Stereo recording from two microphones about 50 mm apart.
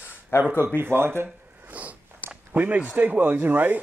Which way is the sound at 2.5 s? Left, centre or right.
Right.